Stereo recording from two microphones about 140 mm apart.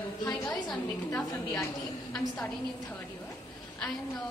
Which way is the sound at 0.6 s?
25° left (ahead or behind).